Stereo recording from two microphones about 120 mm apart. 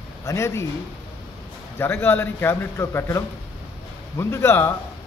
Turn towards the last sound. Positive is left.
turn(degrees=20)  # may be behind; listen again after turning